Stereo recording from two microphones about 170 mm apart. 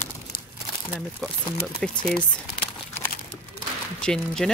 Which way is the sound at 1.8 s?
5° left (ahead or behind).